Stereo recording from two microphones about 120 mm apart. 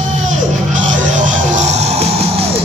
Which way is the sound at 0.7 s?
90° right.